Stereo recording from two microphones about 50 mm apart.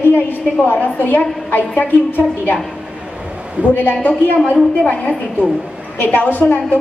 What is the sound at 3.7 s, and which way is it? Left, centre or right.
A woman's voice, left.